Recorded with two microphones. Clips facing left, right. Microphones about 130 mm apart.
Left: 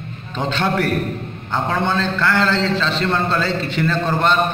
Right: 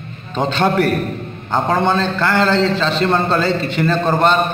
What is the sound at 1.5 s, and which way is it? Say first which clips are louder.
Speech: right 4 dB; 20° right (ahead or behind).